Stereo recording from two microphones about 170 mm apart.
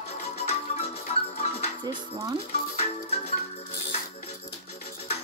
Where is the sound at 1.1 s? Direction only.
40° left (ahead or behind).